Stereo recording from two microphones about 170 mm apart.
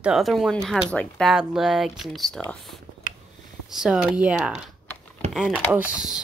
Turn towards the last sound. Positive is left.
turn(degrees=-5)  # may be behind; listen again after turning